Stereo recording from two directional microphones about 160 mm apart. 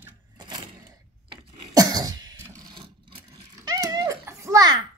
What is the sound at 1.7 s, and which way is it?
Cough, 25° right (ahead or behind).